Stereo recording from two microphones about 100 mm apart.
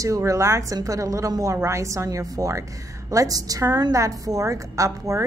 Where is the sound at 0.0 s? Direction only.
35° right (ahead or behind).